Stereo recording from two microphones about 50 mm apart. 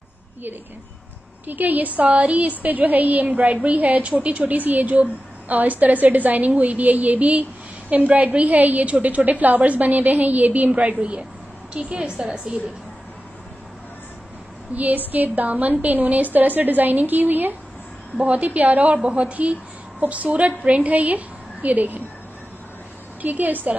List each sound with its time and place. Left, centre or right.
1.5 s a woman's voice: right
14.7 s a woman's voice: right
18.1 s a woman's voice: right
23.2 s a woman's voice: right